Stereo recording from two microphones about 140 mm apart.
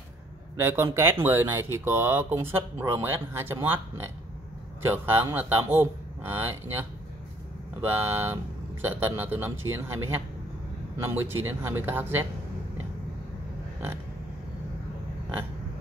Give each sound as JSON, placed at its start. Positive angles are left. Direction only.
{"t": 0.6, "sound": "speech", "side_deg": -15}
{"t": 4.9, "sound": "speech", "side_deg": -15}
{"t": 8.0, "sound": "speech", "side_deg": -15}